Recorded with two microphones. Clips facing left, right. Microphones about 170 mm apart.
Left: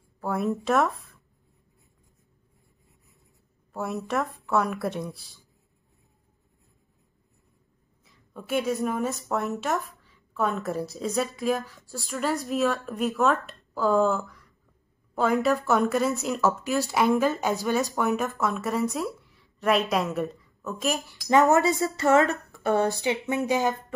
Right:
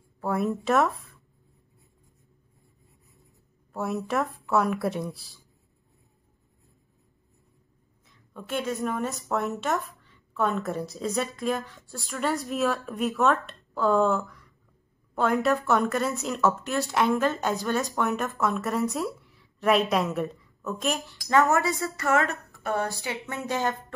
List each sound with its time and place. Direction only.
0.2 s speech: centre (ahead or behind)
3.7 s speech: centre (ahead or behind)
8.0 s a woman's voice: 5° left (ahead or behind)
21.3 s a woman's voice: 20° left (ahead or behind)